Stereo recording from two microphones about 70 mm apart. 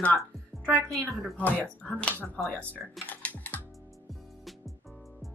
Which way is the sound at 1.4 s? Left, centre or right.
Left.